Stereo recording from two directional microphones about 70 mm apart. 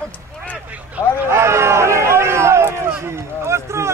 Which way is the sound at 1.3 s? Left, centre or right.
Right.